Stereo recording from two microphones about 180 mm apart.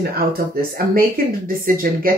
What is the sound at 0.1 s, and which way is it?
Speech, 55° right (ahead or behind).